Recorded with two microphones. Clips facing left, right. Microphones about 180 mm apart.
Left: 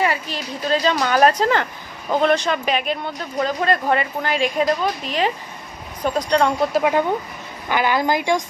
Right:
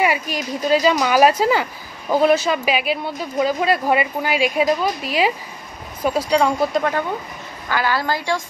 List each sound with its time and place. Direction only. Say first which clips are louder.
0.0 s speech: right 2 dB; 10° right (ahead or behind)
6.8 s a woman's voice: left 3 dB; 15° left (ahead or behind)